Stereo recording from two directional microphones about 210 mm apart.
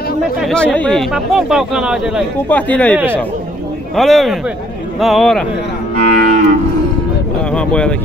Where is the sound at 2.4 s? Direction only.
5° left (ahead or behind).